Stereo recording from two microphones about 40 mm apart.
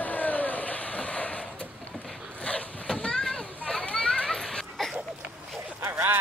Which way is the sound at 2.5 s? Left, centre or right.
Left.